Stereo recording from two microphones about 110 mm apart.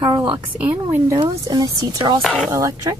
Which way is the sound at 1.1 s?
35° right (ahead or behind).